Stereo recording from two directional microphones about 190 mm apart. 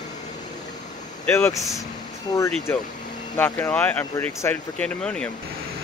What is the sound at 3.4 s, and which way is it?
Speech, 10° left (ahead or behind).